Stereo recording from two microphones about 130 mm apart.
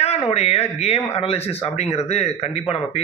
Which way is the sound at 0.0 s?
55° left (ahead or behind).